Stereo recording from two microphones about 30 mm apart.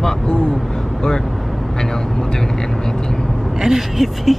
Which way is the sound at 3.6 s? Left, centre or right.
Centre.